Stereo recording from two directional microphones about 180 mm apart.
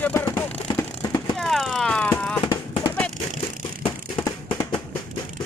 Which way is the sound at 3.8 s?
20° left (ahead or behind).